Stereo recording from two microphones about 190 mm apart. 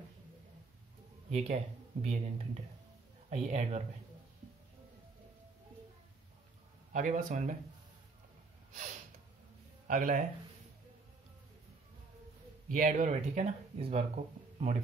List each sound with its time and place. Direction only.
1.3 s speech: 35° right (ahead or behind)
6.9 s speech: 45° right (ahead or behind)
9.8 s speech: 45° right (ahead or behind)
12.6 s speech: 45° right (ahead or behind)